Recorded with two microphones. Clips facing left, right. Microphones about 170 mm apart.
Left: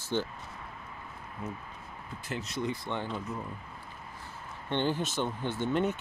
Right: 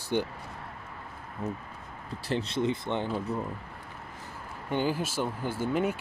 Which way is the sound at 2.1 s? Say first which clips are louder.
Right 7 dB; 35° right (ahead or behind).